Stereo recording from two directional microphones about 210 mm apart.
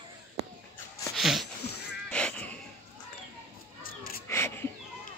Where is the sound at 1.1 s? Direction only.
Centre (ahead or behind).